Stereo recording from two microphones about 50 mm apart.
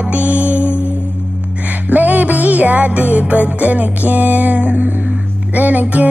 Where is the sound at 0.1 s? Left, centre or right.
Right.